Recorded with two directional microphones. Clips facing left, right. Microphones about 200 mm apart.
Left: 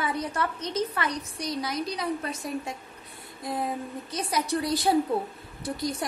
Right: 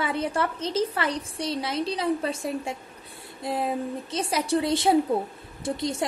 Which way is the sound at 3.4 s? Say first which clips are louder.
Right 3 dB; 30° right (ahead or behind).